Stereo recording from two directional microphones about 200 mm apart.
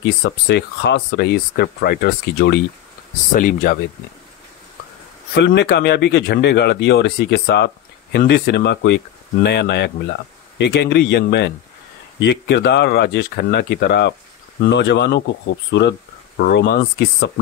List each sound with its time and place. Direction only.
0.0 s speech: 55° left (ahead or behind)
5.3 s speech: 60° left (ahead or behind)